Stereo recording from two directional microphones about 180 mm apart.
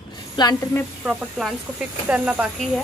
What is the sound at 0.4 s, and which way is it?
Speech, 20° left (ahead or behind).